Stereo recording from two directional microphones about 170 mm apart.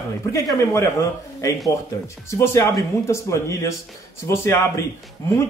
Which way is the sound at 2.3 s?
15° left (ahead or behind).